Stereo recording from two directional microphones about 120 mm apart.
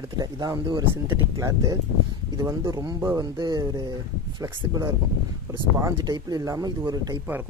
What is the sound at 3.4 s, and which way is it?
Speech, 35° right (ahead or behind).